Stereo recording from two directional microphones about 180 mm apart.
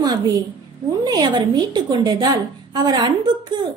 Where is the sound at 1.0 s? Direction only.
25° right (ahead or behind).